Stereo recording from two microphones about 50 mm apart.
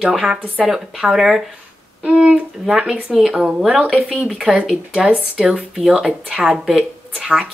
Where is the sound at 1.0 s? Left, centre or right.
Centre.